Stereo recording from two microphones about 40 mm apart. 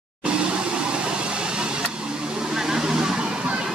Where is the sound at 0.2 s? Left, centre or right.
Right.